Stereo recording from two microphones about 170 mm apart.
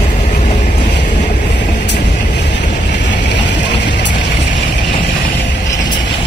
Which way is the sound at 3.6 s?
90° left.